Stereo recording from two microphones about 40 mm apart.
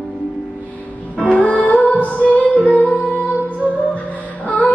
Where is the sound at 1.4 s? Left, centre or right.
Left.